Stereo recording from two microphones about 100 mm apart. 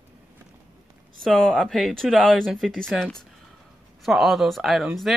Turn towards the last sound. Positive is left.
turn(degrees=0)  # may be behind; listen again after turning